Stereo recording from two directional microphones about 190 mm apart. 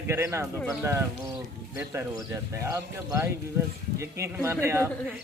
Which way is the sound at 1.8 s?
15° right (ahead or behind).